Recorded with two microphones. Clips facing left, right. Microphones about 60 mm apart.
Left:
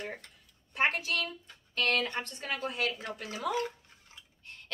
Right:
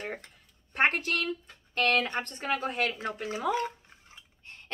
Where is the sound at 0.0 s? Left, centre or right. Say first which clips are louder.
Right 3 dB; right.